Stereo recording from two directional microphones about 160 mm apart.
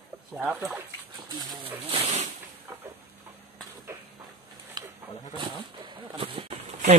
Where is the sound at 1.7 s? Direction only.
40° right (ahead or behind).